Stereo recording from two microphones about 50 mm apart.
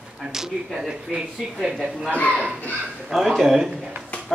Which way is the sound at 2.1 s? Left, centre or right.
Left.